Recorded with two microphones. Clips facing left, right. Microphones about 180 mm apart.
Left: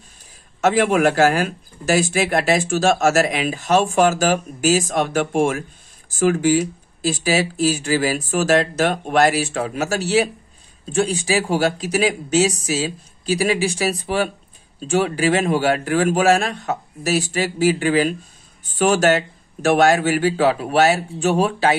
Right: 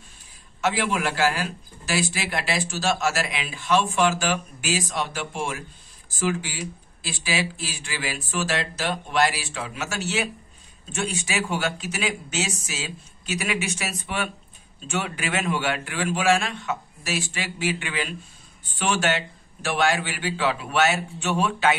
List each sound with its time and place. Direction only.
0.6 s speech: 50° left (ahead or behind)